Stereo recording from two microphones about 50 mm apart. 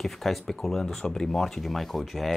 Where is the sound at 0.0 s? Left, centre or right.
Centre.